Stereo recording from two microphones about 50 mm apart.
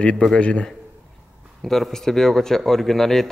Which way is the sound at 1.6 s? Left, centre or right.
Centre.